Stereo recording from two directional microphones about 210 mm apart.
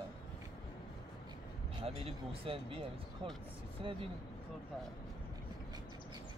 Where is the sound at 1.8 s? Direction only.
25° right (ahead or behind).